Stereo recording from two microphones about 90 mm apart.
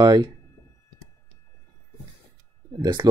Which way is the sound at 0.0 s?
50° right (ahead or behind).